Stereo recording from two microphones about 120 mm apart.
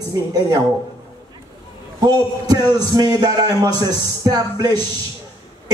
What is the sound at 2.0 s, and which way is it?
Speech, 35° right (ahead or behind).